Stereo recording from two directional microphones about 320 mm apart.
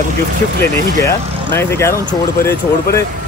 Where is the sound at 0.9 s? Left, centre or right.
Centre.